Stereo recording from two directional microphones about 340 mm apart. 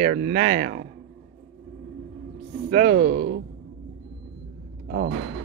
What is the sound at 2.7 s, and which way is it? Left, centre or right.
Speech, right.